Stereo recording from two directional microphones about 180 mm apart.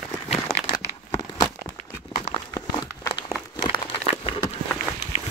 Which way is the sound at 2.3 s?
20° left (ahead or behind).